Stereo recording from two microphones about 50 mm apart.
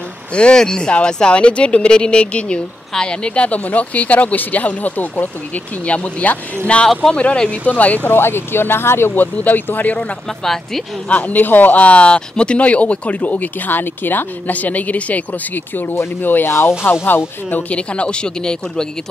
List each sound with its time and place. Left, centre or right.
0.3 s speech: centre
8.2 s speech: left
9.2 s speech: left
10.4 s speech: centre
11.1 s speech: left
16.5 s speech: left
17.7 s speech: left